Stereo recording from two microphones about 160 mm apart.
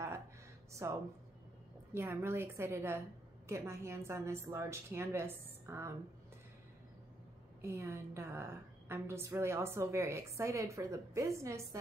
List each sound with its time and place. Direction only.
0.8 s a woman's voice: 20° right (ahead or behind)
7.6 s a woman's voice: 15° right (ahead or behind)